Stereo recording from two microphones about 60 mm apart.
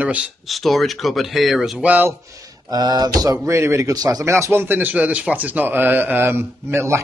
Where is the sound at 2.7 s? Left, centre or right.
Right.